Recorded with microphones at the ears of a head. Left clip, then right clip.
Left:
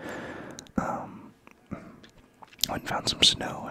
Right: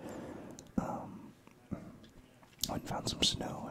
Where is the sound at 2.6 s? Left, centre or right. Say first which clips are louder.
Left 9 dB; left.